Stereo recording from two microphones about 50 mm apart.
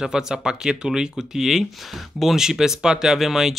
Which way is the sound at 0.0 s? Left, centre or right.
Centre.